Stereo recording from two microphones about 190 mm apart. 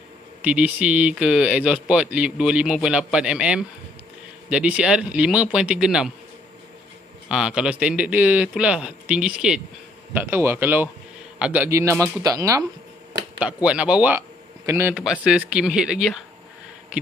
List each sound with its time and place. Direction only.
0.4 s speech: 5° right (ahead or behind)
7.2 s speech: 5° right (ahead or behind)
13.4 s speech: 5° right (ahead or behind)